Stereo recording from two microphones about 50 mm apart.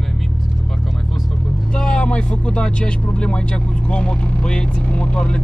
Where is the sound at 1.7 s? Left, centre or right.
Centre.